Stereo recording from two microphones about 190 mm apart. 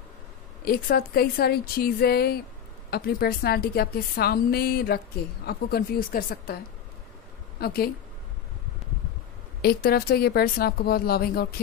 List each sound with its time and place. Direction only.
0.7 s a woman's voice: 55° left (ahead or behind)
7.6 s a woman's voice: 55° left (ahead or behind)
9.6 s a woman's voice: 55° left (ahead or behind)